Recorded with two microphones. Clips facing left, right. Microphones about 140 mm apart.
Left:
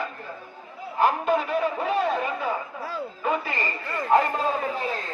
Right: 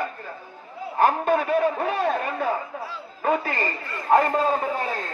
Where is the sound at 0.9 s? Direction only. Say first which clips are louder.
Right 2 dB; 45° right (ahead or behind).